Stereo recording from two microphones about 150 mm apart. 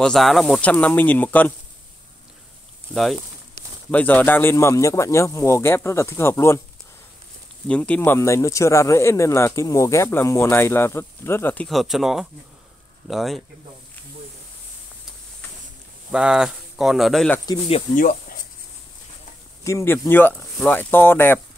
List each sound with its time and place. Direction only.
0.0 s speech: centre (ahead or behind)
2.9 s speech: centre (ahead or behind); by 6.6 s 15° left (ahead or behind)
7.6 s speech: 10° left (ahead or behind)
16.1 s speech: 5° right (ahead or behind)
17.9 s speech: 60° left (ahead or behind)
19.6 s speech: 20° left (ahead or behind)